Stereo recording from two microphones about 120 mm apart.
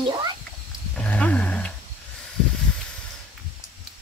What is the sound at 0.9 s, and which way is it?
Roaring cats, 10° left (ahead or behind).